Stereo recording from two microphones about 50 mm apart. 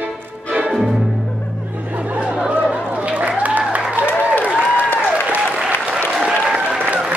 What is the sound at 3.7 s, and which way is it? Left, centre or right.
Applause, centre.